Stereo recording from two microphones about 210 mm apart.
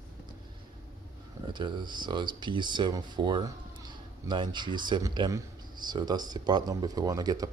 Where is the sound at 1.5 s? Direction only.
20° right (ahead or behind).